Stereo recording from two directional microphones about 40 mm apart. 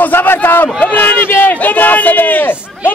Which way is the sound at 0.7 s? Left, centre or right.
Left.